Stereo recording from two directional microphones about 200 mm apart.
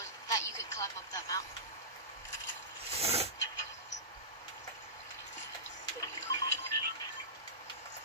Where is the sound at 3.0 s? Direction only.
30° right (ahead or behind).